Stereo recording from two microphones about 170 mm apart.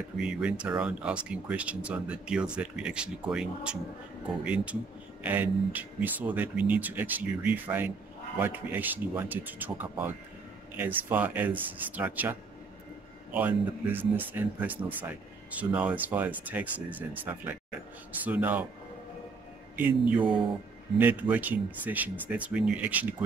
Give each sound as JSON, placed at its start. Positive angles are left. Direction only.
{"t": 0.2, "sound": "speech", "side_deg": -5}
{"t": 5.2, "sound": "speech", "side_deg": -10}
{"t": 19.7, "sound": "speech", "side_deg": -10}